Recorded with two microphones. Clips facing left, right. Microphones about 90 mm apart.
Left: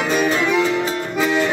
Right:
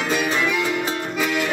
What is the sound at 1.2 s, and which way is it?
Music, 30° left (ahead or behind).